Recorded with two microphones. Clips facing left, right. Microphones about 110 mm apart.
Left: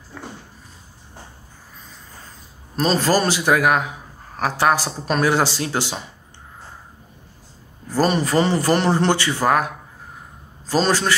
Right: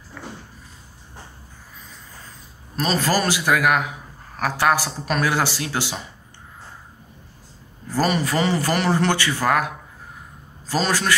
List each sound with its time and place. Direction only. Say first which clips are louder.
2.7 s a man's voice: left 3 dB; 30° left (ahead or behind)
8.0 s a man's voice: left 3 dB; 30° left (ahead or behind)
10.7 s a man's voice: left 3 dB; 30° left (ahead or behind)